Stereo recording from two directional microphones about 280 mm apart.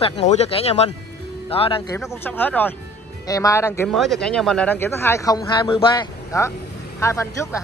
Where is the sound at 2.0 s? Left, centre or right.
Centre.